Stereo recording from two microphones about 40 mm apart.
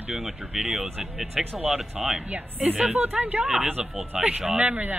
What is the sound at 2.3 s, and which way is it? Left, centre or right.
Speech, right.